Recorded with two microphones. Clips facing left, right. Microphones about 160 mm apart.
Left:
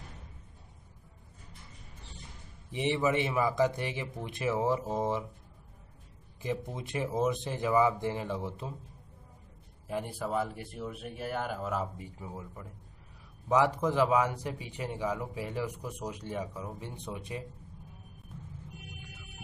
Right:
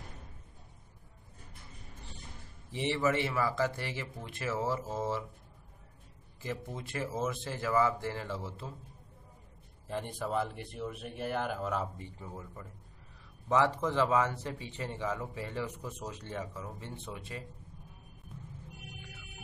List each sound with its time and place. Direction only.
2.7 s speech: 15° left (ahead or behind)
6.4 s speech: 20° left (ahead or behind)
9.8 s speech: 10° left (ahead or behind)